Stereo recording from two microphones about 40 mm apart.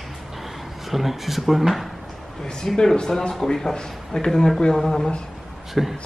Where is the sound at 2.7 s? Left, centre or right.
Centre.